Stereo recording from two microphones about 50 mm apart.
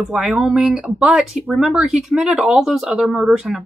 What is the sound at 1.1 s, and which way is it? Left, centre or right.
Speech, centre.